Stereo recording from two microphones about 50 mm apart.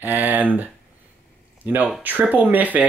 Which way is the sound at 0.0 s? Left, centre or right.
Right.